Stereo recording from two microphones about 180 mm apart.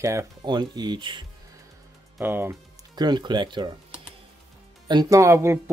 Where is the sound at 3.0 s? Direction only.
25° right (ahead or behind).